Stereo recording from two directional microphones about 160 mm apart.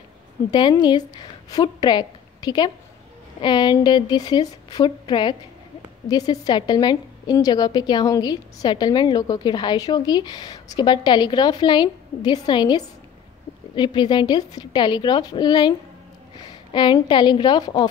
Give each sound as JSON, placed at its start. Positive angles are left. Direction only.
{"t": 0.5, "sound": "a woman's voice", "side_deg": 25}
{"t": 16.7, "sound": "a woman's voice", "side_deg": 30}